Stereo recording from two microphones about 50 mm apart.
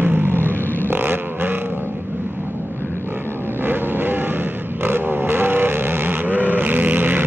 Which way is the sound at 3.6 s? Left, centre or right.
Right.